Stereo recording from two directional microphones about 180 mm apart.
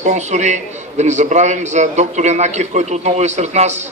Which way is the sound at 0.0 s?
40° right (ahead or behind).